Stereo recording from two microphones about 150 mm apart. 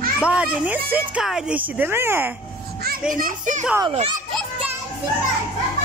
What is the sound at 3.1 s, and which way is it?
Speech, 65° right (ahead or behind).